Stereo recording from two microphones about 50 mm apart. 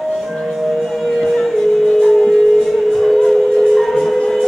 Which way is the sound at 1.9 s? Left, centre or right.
Centre.